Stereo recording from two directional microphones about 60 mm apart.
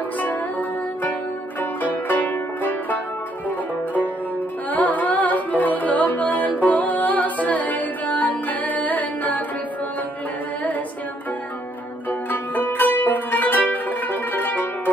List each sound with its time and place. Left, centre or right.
0.2 s music: left
12.1 s music: left